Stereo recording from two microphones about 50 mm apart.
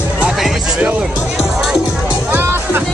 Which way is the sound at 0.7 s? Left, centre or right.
Right.